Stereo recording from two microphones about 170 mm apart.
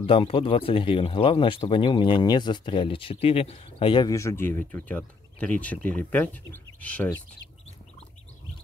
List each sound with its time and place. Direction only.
0.0 s speech: 30° left (ahead or behind); by 7.1 s 10° left (ahead or behind)